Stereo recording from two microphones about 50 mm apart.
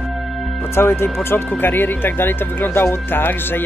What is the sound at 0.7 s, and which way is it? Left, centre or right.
Speech, left.